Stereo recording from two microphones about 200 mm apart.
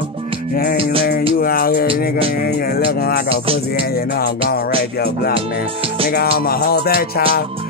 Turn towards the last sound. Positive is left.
turn(degrees=50)  # may be behind; listen again after turning